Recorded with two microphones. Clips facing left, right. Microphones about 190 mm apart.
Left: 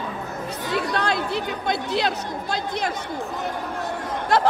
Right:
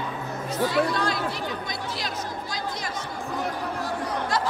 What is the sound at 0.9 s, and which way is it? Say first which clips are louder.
Chatter: left 3 dB; 65° left (ahead or behind).